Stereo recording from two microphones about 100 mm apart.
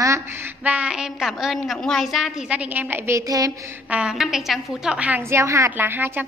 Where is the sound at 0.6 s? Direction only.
10° right (ahead or behind).